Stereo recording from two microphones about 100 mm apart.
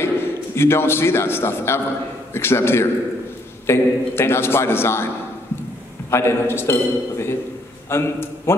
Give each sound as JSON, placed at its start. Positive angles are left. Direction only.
{"t": 0.0, "sound": "a man's voice", "side_deg": 25}